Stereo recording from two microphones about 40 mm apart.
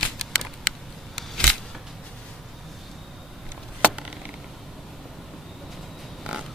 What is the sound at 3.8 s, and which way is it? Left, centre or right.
Chop, right.